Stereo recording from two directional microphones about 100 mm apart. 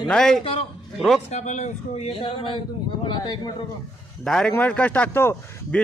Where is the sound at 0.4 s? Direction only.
60° left (ahead or behind).